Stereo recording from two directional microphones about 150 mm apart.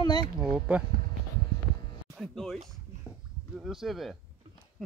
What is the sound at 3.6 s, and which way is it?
Speech, centre (ahead or behind).